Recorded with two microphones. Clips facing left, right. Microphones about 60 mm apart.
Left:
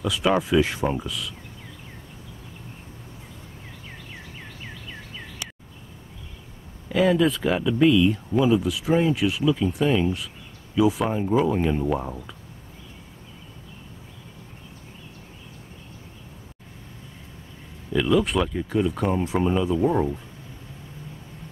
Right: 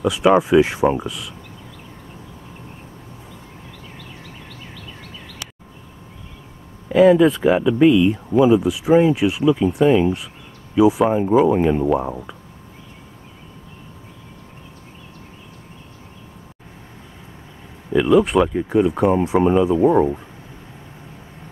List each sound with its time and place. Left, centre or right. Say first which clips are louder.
0.0 s speech: right 7 dB; centre
6.9 s speech: right 8 dB; centre
17.9 s speech: right 7 dB; centre